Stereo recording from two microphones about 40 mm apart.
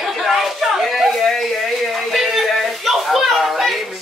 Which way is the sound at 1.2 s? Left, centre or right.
Centre.